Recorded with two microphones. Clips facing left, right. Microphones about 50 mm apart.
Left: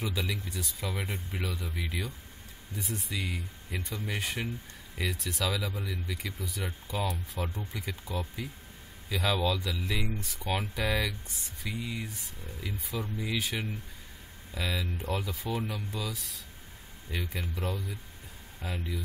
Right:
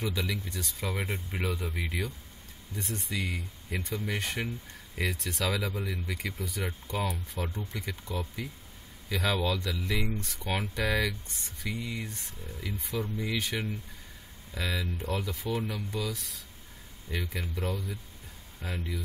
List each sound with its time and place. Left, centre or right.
0.0 s speech: centre
0.8 s speech: centre
1.4 s speech: right
2.7 s speech: centre
5.5 s speech: centre
6.1 s speech: centre